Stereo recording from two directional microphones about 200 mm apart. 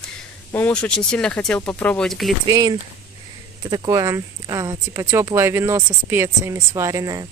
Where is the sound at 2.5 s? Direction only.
20° right (ahead or behind).